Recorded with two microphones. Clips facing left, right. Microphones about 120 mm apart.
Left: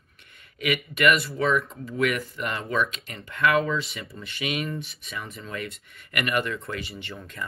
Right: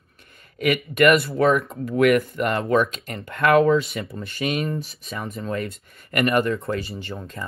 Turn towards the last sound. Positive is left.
turn(degrees=-30)  # may be behind; listen again after turning